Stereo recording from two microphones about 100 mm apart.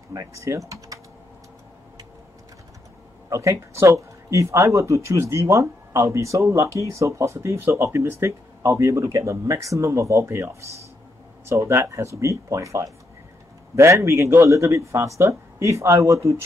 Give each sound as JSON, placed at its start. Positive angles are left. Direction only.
{"t": 0.1, "sound": "speech", "side_deg": -35}
{"t": 3.3, "sound": "speech", "side_deg": -30}